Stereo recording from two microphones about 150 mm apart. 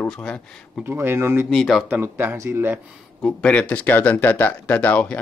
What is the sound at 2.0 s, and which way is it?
Speech, 15° right (ahead or behind).